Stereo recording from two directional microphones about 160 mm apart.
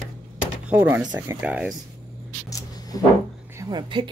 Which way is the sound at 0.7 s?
10° right (ahead or behind).